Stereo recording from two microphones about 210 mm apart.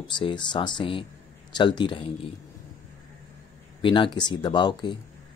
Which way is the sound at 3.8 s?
25° left (ahead or behind).